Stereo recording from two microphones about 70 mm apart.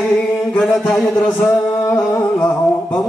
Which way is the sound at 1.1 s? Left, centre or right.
Centre.